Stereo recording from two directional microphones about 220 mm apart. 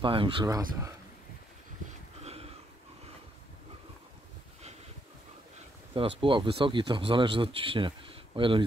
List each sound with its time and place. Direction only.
0.0 s speech: 25° right (ahead or behind)
2.2 s a sound: 25° right (ahead or behind)
5.9 s speech: 20° right (ahead or behind)